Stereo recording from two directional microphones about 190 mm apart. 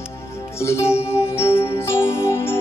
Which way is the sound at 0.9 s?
30° left (ahead or behind).